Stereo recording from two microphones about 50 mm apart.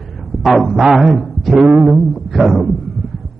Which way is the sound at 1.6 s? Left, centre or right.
Centre.